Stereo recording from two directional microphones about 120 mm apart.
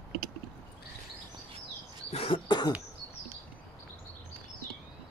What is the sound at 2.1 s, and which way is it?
Cough, 45° left (ahead or behind).